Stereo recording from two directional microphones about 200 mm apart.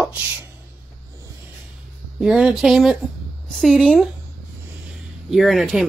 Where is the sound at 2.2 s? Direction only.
5° right (ahead or behind).